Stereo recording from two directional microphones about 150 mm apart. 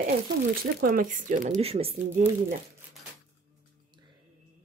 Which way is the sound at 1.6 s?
40° right (ahead or behind).